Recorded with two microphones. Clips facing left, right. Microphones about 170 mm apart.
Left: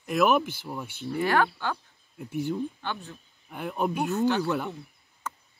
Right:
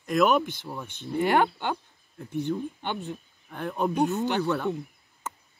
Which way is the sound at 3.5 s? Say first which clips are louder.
Right 1 dB; 5° left (ahead or behind).